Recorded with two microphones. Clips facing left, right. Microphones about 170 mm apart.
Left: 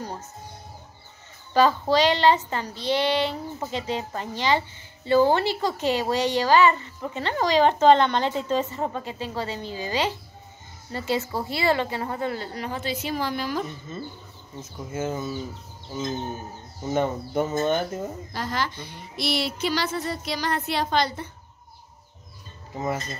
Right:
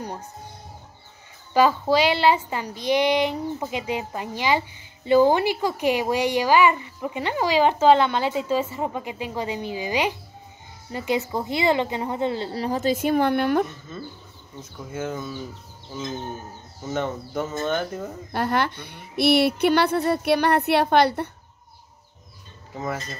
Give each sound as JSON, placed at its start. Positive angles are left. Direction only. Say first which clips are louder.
{"t": 1.5, "sound": "a woman's voice", "louder": "right 1 dB", "side_deg": -10}
{"t": 14.6, "sound": "speech", "louder": "left 1 dB", "side_deg": 5}
{"t": 16.9, "sound": "speech", "louder": "left 3 dB", "side_deg": 10}
{"t": 18.3, "sound": "speech", "louder": "right 8 dB", "side_deg": -60}